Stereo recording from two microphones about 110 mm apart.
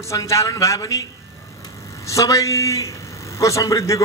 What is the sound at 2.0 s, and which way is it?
A man's voice, 30° left (ahead or behind).